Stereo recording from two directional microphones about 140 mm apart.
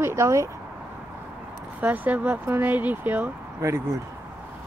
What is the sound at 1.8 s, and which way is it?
Speech, 10° right (ahead or behind).